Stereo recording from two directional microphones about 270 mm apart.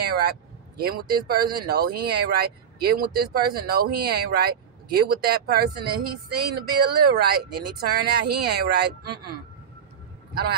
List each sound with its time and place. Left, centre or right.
0.0 s speech: right